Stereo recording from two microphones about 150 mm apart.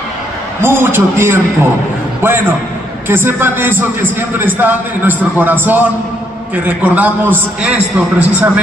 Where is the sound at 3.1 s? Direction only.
15° right (ahead or behind).